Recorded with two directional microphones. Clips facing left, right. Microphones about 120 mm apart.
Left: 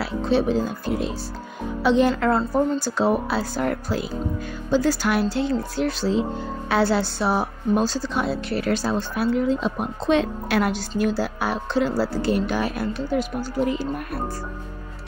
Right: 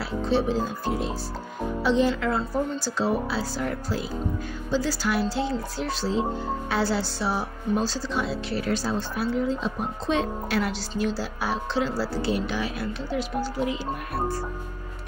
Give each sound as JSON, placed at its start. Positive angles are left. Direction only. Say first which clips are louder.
{"t": 0.0, "sound": "music", "louder": "left 3 dB", "side_deg": 65}
{"t": 1.8, "sound": "a woman's voice", "louder": "left 4 dB", "side_deg": 65}